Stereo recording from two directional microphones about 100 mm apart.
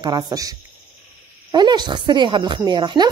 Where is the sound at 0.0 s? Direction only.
40° right (ahead or behind).